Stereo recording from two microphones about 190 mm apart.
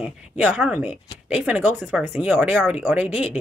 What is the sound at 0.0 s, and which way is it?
Speech, 5° right (ahead or behind).